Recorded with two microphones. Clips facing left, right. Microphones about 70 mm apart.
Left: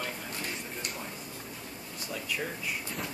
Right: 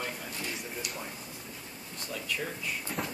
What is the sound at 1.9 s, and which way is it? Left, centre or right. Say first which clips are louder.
Speech: even; centre.